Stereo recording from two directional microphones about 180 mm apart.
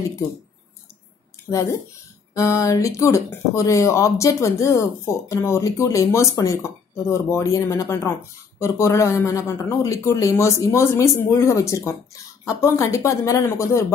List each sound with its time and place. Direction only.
2.3 s speech: 20° left (ahead or behind)